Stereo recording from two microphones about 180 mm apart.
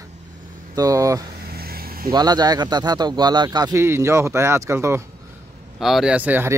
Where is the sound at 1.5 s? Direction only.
55° right (ahead or behind).